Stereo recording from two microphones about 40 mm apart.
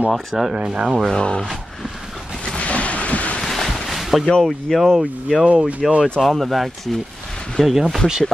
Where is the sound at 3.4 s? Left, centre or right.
Centre.